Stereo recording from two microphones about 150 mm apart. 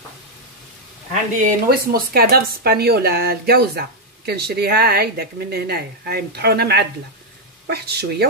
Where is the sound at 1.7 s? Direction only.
80° right.